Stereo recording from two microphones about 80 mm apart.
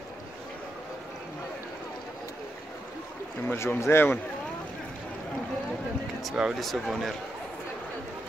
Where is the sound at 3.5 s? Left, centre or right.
Left.